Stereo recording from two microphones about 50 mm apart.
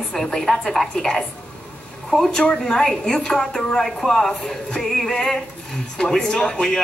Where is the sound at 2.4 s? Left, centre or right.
Left.